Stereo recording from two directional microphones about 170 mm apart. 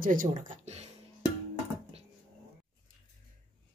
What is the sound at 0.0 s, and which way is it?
Speech, 50° right (ahead or behind).